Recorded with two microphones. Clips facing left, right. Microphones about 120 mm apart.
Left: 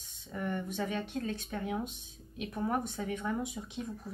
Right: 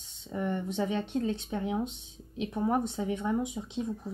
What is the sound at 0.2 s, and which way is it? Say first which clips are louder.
Speech: right 4 dB; 20° right (ahead or behind).